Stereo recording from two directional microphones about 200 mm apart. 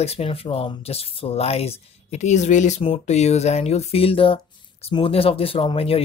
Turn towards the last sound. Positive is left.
turn(degrees=25)  # may be behind; listen again after turning